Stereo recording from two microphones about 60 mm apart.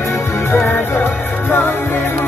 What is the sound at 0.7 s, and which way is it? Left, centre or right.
Music, left.